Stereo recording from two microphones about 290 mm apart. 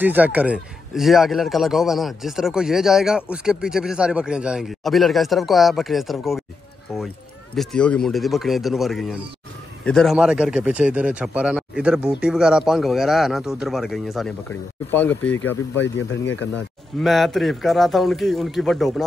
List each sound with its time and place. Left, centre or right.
0.0 s a man's voice: centre
15.8 s speech: left
17.0 s a man's voice: centre